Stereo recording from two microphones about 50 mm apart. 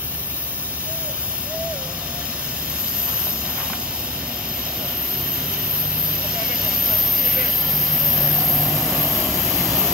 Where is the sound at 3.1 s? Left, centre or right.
Right.